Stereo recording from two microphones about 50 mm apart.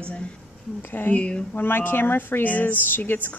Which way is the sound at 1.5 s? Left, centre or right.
Left.